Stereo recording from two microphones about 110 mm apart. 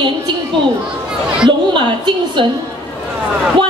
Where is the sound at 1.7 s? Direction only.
45° right (ahead or behind).